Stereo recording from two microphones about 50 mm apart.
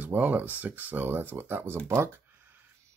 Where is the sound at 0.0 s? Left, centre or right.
Right.